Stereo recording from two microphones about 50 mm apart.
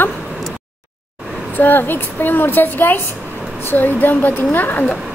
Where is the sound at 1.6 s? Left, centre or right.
Left.